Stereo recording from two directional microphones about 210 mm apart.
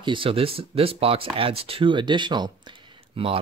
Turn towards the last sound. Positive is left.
turn(degrees=-25)  # may be behind; listen again after turning